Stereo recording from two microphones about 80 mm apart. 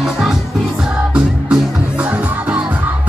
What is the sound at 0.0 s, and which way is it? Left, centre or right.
Music, centre.